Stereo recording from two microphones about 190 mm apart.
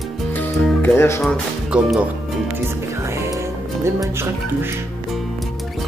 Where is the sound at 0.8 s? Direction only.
15° left (ahead or behind).